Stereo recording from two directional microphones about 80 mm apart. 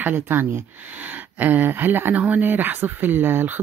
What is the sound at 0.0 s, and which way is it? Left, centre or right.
Speech, right.